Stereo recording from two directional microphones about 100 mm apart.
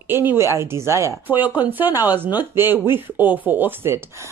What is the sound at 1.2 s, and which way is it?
Speech, 15° right (ahead or behind).